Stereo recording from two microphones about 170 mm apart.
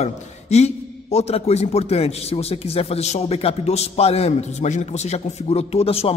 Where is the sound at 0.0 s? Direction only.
40° left (ahead or behind).